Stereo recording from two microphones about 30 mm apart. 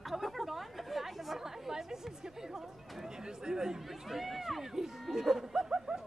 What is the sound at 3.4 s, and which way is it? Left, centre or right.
Speech, centre.